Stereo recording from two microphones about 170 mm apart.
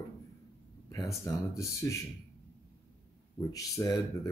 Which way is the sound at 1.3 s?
20° left (ahead or behind).